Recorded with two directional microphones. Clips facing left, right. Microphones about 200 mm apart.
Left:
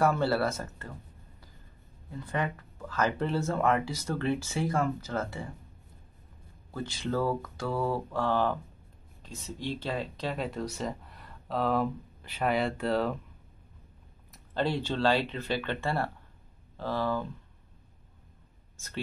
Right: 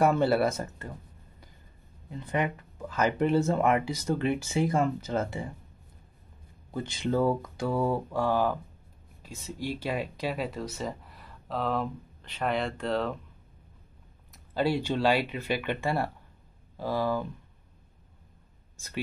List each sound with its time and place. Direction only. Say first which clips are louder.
0.0 s speech: right 3 dB; 15° right (ahead or behind)
2.0 s speech: right 3 dB; 20° right (ahead or behind)
6.7 s speech: right 3 dB; 20° right (ahead or behind); by 13.1 s 5° left (ahead or behind)
14.3 s speech: right 3 dB; 10° right (ahead or behind)